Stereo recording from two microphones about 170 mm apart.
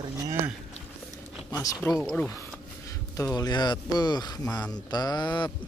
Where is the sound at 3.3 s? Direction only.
25° left (ahead or behind).